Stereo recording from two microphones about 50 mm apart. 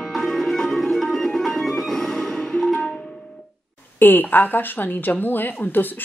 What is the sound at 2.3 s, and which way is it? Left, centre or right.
Music, centre.